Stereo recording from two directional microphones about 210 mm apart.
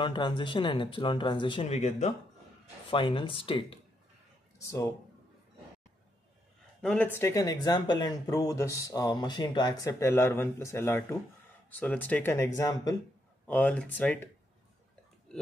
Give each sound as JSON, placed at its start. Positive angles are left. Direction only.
{"t": 0.0, "sound": "speech", "side_deg": 25}
{"t": 4.6, "sound": "speech", "side_deg": 15}
{"t": 6.8, "sound": "speech", "side_deg": 5}
{"t": 13.5, "sound": "speech", "side_deg": 5}